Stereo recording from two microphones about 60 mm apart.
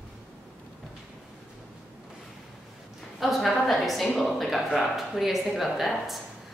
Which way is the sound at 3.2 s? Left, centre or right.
Centre.